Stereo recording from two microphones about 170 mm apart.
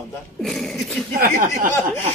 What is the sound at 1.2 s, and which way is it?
Speech, 55° right (ahead or behind).